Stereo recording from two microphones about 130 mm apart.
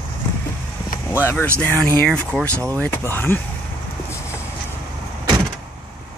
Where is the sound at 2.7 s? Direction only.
15° left (ahead or behind).